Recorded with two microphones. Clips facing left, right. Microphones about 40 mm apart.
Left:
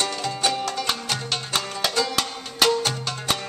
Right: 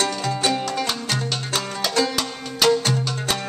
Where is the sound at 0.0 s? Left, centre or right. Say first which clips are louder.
Right 2 dB; centre.